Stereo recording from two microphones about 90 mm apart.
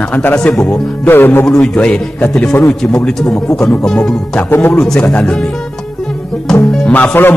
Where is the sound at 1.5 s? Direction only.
10° left (ahead or behind).